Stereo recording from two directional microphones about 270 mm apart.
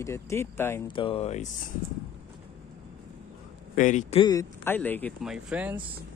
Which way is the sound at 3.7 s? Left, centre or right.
Left.